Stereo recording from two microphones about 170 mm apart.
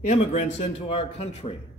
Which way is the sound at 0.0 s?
45° left (ahead or behind).